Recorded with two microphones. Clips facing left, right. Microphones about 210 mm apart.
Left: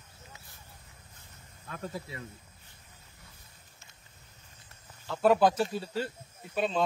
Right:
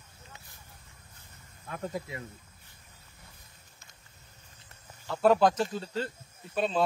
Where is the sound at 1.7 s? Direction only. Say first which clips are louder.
Right 3 dB; 20° right (ahead or behind).